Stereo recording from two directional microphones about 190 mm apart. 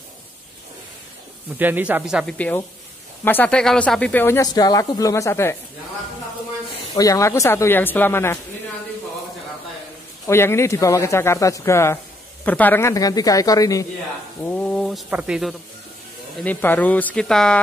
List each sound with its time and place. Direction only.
1.6 s speech: 10° right (ahead or behind)
2.3 s speech: 5° left (ahead or behind)
7.0 s speech: 15° left (ahead or behind)
10.2 s speech: 15° left (ahead or behind)
14.6 s speech: centre (ahead or behind)
16.4 s speech: 10° left (ahead or behind)